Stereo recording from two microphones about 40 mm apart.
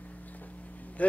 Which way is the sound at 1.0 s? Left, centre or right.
Left.